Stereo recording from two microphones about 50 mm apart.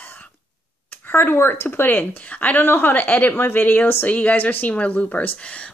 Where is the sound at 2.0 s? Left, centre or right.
Left.